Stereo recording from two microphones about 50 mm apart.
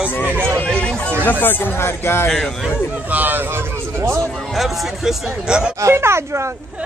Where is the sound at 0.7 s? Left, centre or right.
Left.